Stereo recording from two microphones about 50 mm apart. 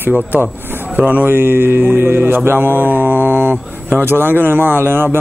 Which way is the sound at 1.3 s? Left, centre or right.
Right.